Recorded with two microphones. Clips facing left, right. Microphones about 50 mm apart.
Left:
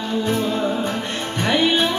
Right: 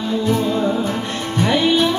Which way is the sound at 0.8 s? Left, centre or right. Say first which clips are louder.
Right 2 dB; left.